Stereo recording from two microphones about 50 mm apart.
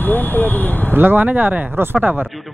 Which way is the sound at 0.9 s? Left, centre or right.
Right.